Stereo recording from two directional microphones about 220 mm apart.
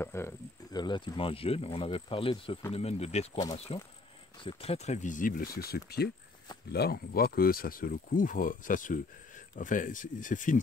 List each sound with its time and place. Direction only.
0.0 s cricket: 10° left (ahead or behind)
0.7 s speech: 20° left (ahead or behind); by 10.6 s 35° left (ahead or behind)